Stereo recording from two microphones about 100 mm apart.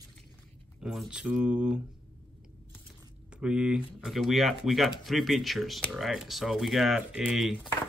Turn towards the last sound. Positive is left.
turn(degrees=-5)  # may be behind; listen again after turning